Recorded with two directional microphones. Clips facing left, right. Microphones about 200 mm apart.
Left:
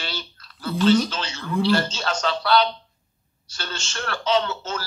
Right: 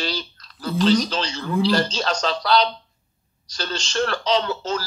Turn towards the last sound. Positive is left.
turn(degrees=-35)  # may be behind; listen again after turning